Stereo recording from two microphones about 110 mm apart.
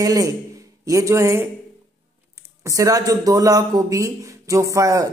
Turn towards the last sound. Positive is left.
turn(degrees=-30)  # may be behind; listen again after turning